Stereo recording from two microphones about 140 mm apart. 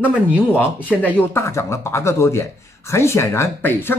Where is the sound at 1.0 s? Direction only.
15° left (ahead or behind).